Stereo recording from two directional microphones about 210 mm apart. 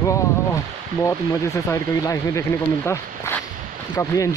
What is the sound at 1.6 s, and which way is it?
Speech, 15° left (ahead or behind).